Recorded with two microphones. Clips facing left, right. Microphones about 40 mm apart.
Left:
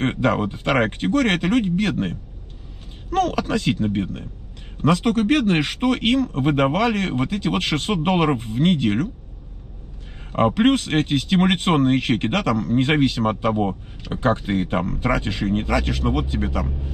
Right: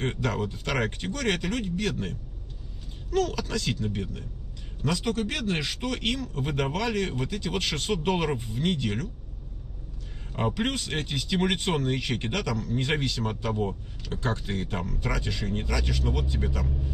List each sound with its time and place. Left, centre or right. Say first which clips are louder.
0.0 s speech: left 9 dB; left
10.3 s speech: left 11 dB; left